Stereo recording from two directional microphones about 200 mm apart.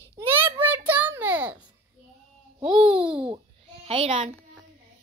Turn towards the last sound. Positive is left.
turn(degrees=-30)  # may be behind; listen again after turning